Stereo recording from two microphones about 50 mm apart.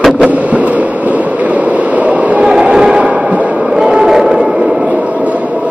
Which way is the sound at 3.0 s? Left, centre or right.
Right.